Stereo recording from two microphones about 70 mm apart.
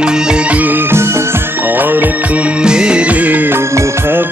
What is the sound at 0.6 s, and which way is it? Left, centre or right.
Music, right.